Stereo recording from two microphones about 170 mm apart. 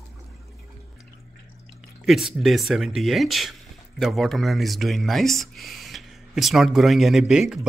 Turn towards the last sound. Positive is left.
turn(degrees=-5)  # may be behind; listen again after turning